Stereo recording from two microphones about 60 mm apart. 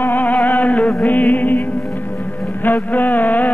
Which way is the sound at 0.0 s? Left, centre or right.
Left.